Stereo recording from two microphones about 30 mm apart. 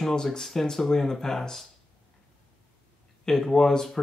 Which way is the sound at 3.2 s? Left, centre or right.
Centre.